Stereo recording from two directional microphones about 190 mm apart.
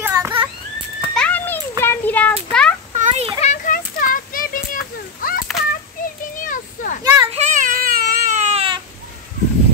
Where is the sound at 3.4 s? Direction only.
40° left (ahead or behind).